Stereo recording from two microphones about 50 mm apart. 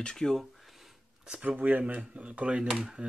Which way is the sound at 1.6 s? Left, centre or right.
Right.